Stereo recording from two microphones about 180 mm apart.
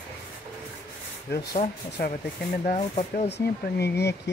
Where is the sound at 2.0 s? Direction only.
55° left (ahead or behind).